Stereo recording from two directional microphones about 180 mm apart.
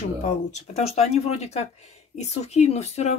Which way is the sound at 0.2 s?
40° left (ahead or behind).